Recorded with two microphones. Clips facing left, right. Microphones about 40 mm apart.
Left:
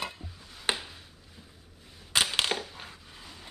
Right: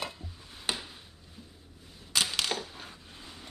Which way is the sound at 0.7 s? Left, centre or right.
Left.